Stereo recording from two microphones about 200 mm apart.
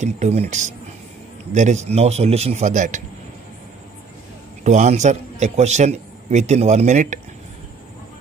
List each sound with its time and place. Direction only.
0.0 s a man's voice: 35° right (ahead or behind)
4.6 s a man's voice: 35° right (ahead or behind)